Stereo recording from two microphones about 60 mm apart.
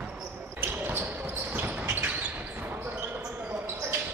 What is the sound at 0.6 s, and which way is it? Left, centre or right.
Basketball bounce, right.